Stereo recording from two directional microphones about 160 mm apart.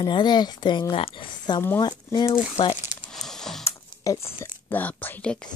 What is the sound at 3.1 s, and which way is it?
Computer keyboard, 5° left (ahead or behind).